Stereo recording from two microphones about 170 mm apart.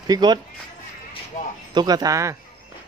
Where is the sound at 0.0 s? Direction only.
25° right (ahead or behind).